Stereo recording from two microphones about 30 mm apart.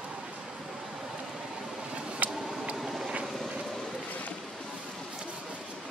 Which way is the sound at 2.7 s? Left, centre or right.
Centre.